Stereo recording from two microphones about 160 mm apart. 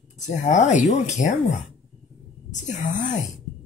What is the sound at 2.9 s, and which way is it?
Speech, 50° left (ahead or behind).